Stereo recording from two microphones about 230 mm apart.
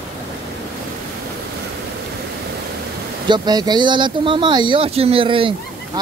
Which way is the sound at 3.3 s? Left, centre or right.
Centre.